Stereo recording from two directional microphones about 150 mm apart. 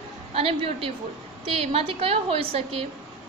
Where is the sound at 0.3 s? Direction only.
40° right (ahead or behind).